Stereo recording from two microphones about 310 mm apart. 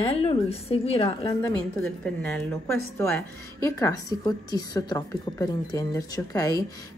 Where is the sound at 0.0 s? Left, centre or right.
Centre.